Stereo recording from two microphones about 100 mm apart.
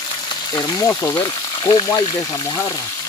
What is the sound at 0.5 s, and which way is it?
Speech, 35° left (ahead or behind).